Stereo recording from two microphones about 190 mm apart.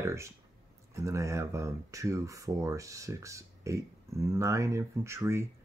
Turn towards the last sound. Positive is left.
turn(degrees=-15)  # may be behind; listen again after turning